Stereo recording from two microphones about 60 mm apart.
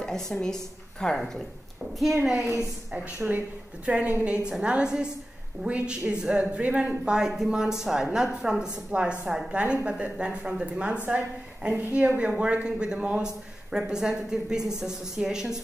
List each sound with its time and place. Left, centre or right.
0.0 s speech: centre
2.2 s a woman's voice: centre
3.2 s speech: right
3.8 s a woman's voice: centre
7.1 s speech: centre
8.9 s a woman's voice: right